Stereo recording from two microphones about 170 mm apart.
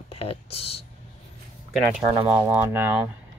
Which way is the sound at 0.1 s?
35° left (ahead or behind).